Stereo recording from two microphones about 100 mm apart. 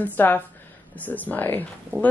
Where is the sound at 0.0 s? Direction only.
20° left (ahead or behind).